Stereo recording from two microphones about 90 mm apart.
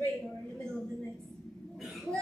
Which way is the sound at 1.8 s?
Centre (ahead or behind).